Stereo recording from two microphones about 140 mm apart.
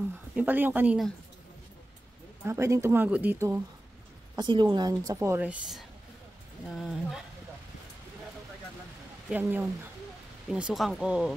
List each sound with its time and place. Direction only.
0.4 s speech: 15° right (ahead or behind)
2.4 s speech: 20° right (ahead or behind)
4.4 s speech: 30° right (ahead or behind)
5.4 s speech: 5° right (ahead or behind)
9.3 s speech: 15° right (ahead or behind)